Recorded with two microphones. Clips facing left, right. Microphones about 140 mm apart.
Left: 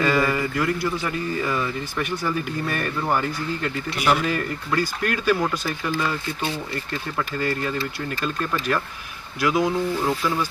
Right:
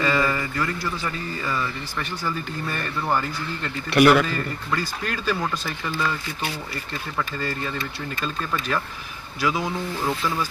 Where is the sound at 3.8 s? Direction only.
65° right (ahead or behind).